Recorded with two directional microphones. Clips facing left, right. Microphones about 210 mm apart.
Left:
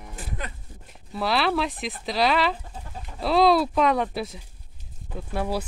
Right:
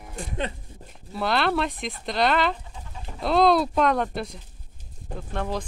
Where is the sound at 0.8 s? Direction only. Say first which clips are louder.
Even; centre (ahead or behind).